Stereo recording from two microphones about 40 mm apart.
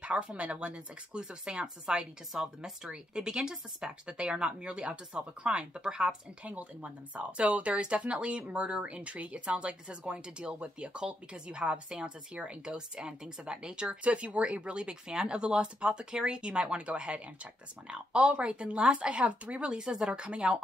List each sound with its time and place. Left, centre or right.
0.0 s speech: right
6.4 s speech: right
19.7 s speech: right